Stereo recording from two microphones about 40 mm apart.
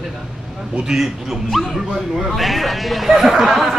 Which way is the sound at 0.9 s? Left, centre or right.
Centre.